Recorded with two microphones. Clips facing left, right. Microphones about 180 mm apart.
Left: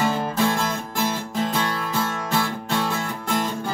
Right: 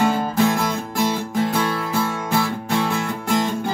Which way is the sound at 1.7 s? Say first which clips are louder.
Right 3 dB; 10° right (ahead or behind).